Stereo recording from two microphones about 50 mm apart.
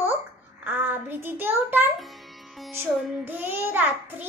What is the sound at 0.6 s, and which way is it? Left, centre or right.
Child singing, right.